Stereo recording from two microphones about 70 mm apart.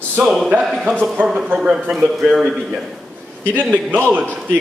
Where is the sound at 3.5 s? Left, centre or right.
Right.